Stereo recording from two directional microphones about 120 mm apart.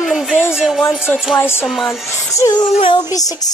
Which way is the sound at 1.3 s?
20° left (ahead or behind).